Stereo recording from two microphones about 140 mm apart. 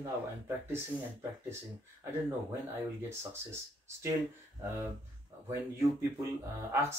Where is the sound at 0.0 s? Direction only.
15° right (ahead or behind).